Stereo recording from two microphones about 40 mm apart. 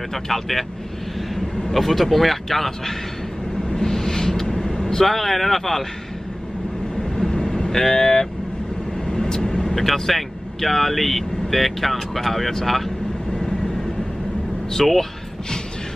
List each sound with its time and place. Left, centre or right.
0.1 s speech: centre
1.7 s speech: centre
3.6 s vehicle: centre
5.0 s speech: centre
7.2 s vehicle: centre
9.8 s speech: centre
14.7 s speech: centre